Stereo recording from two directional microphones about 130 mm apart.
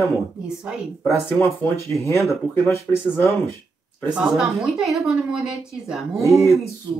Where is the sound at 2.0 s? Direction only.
25° left (ahead or behind).